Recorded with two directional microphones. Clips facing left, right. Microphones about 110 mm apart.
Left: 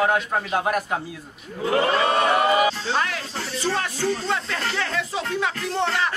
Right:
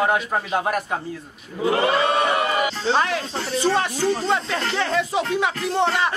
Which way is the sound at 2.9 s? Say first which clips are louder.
Right 4 dB; 25° right (ahead or behind).